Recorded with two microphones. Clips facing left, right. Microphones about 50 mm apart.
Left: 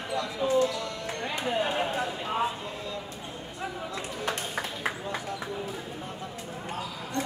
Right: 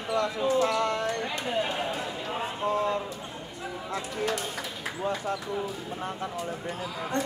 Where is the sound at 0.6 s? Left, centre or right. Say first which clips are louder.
Right 3 dB; right.